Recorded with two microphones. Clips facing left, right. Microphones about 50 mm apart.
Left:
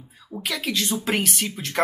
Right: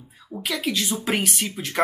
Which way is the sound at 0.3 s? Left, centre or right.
Centre.